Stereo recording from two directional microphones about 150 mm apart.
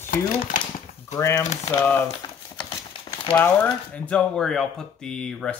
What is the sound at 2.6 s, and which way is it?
Horse, 35° left (ahead or behind).